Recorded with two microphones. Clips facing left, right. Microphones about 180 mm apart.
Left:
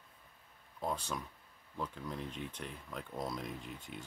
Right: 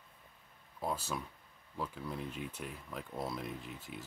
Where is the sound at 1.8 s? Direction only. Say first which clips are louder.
Right 1 dB; 5° right (ahead or behind).